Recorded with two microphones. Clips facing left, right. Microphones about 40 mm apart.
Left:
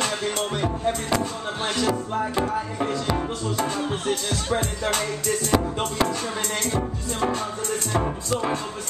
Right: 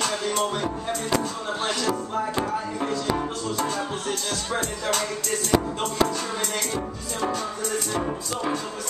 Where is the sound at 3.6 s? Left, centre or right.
Left.